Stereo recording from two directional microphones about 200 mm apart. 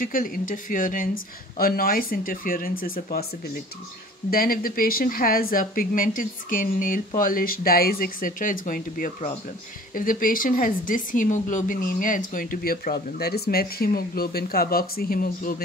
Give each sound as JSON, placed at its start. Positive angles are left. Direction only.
{"t": 0.0, "sound": "speech", "side_deg": 45}
{"t": 4.3, "sound": "speech", "side_deg": 45}